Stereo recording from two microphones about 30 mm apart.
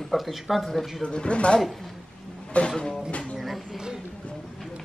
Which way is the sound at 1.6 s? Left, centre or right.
Centre.